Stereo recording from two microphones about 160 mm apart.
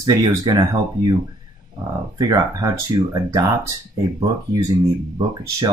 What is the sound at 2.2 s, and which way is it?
Speech, 25° right (ahead or behind).